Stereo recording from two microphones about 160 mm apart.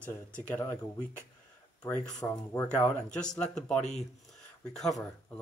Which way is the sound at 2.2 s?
15° left (ahead or behind).